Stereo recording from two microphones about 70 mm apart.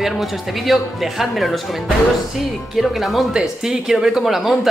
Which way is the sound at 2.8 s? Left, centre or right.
Centre.